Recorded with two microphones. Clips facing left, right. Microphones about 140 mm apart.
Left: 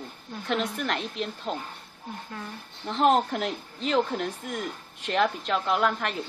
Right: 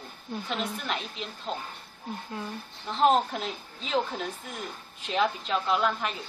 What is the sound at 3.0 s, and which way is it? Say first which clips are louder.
A woman's voice: left 1 dB; 60° left (ahead or behind).